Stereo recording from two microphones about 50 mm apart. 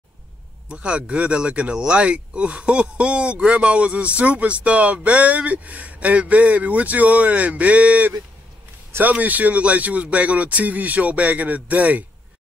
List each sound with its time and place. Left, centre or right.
0.7 s speech: right